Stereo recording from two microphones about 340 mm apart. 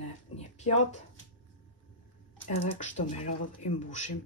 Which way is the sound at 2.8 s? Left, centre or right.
Left.